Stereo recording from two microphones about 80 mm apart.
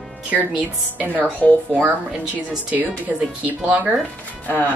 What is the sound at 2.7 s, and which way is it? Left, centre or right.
Speech, centre.